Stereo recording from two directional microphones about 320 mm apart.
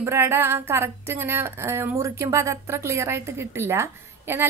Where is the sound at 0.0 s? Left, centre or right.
Centre.